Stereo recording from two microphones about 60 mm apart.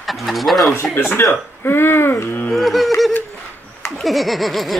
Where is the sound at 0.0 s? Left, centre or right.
Centre.